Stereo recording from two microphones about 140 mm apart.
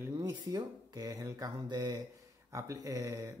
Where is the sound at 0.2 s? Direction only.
25° right (ahead or behind).